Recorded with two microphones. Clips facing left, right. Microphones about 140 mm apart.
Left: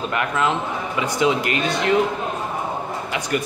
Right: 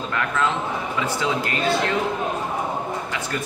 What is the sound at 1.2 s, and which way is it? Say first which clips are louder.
Speech: left 5 dB; 15° left (ahead or behind).